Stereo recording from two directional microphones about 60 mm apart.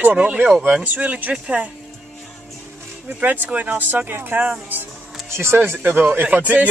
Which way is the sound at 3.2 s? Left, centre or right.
Right.